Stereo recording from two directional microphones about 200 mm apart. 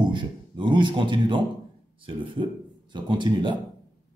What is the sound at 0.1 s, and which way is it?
A man's voice, 25° right (ahead or behind).